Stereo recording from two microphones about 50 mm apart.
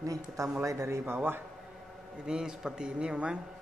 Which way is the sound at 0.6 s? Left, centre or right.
Right.